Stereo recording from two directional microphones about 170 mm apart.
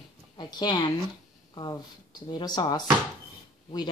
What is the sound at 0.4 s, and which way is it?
Speech, 25° left (ahead or behind).